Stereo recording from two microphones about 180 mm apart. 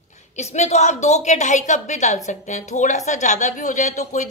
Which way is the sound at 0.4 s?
40° left (ahead or behind).